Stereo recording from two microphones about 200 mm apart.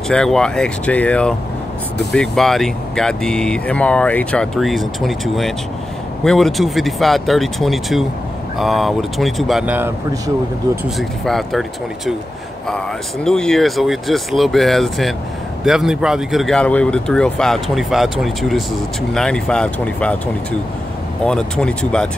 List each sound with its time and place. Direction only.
0.1 s speech: 5° left (ahead or behind)
11.0 s speech: centre (ahead or behind)
12.6 s speech: 5° left (ahead or behind)
21.2 s speech: 5° left (ahead or behind)